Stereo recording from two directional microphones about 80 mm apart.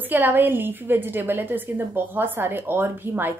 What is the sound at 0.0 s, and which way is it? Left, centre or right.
A woman's voice, right.